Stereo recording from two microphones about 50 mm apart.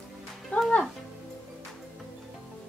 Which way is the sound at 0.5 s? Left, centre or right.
Left.